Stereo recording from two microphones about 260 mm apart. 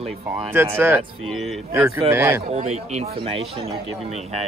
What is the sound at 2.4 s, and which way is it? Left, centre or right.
Speech, right.